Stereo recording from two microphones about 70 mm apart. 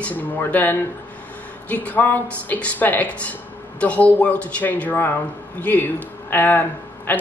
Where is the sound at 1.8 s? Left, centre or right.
Left.